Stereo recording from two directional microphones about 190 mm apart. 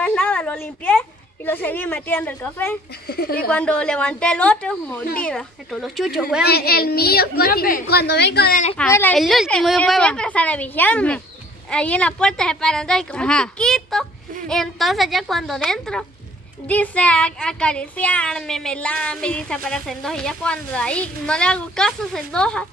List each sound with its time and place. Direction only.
0.0 s a woman's voice: 5° left (ahead or behind)
3.1 s speech: 55° left (ahead or behind)
3.4 s speech: 5° left (ahead or behind)
6.4 s a woman's voice: 55° left (ahead or behind)
8.7 s a woman's voice: 10° left (ahead or behind)